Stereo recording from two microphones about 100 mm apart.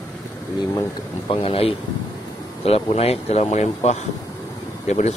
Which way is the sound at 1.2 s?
65° left (ahead or behind).